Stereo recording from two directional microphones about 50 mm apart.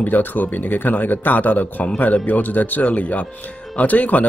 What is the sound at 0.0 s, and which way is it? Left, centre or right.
Speech, left.